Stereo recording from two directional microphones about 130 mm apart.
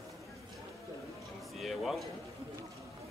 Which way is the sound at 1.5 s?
Centre (ahead or behind).